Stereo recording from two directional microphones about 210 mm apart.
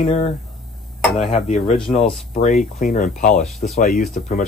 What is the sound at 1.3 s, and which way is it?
Speech, 30° left (ahead or behind).